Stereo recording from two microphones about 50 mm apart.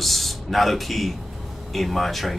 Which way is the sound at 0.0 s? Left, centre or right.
Centre.